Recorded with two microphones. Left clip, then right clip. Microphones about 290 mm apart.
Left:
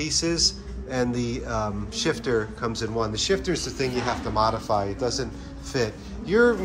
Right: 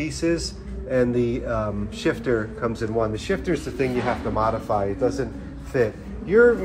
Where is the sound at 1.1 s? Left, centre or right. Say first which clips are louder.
Right 6 dB; left.